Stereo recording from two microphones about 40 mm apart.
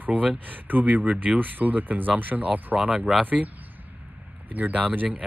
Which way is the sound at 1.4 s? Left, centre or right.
Right.